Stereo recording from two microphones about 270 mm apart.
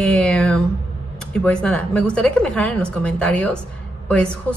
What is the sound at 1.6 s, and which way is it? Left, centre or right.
A woman's voice, centre.